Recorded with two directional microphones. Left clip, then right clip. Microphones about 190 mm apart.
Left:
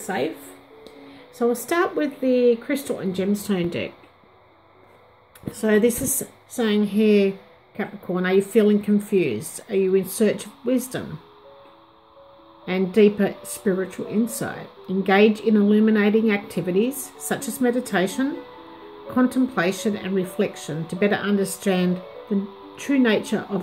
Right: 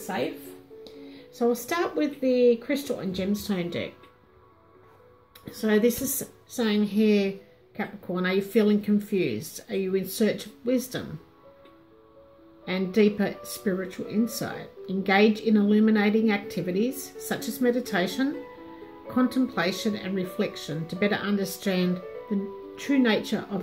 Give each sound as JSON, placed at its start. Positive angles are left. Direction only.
{"t": 0.1, "sound": "a woman's voice", "side_deg": 35}
{"t": 1.4, "sound": "a woman's voice", "side_deg": 30}
{"t": 5.5, "sound": "a woman's voice", "side_deg": 30}
{"t": 12.6, "sound": "a woman's voice", "side_deg": 30}